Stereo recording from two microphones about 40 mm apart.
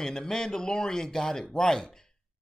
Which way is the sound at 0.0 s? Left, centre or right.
Centre.